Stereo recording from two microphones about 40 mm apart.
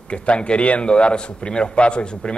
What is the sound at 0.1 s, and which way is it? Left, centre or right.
A man's voice, left.